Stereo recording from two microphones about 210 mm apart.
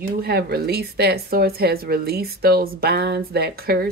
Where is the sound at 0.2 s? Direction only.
50° right (ahead or behind).